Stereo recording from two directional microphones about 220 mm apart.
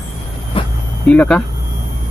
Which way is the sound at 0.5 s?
25° left (ahead or behind).